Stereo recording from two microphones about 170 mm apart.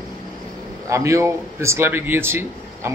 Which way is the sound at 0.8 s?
20° right (ahead or behind).